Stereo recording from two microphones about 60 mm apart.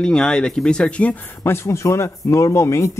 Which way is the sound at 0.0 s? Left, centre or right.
Centre.